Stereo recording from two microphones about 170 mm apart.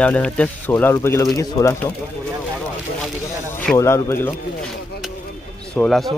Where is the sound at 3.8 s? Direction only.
15° left (ahead or behind).